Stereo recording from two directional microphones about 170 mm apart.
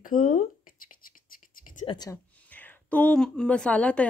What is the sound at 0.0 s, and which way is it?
Speech, 50° left (ahead or behind).